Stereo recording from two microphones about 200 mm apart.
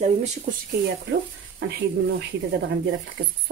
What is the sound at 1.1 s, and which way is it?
Frying, 55° right (ahead or behind).